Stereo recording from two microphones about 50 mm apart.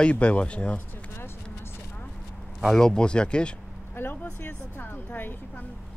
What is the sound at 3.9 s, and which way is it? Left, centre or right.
Speech, left.